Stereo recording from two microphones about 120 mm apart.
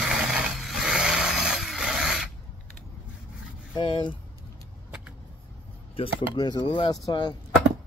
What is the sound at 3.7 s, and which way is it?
Vehicle, 40° left (ahead or behind).